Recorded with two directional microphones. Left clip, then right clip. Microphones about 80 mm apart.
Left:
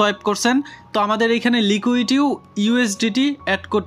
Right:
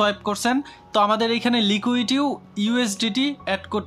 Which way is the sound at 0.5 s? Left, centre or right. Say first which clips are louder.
Left 1 dB; centre.